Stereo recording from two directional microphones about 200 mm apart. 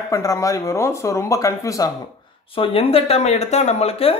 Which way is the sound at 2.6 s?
30° left (ahead or behind).